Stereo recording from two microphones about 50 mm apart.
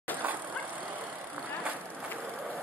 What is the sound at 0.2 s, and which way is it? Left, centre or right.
Vehicle, right.